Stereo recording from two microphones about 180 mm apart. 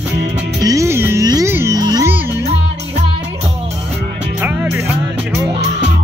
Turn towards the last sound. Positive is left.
turn(degrees=-10)  # may be behind; listen again after turning